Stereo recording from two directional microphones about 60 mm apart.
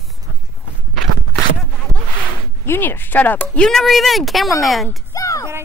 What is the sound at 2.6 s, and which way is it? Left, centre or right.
Speech, left.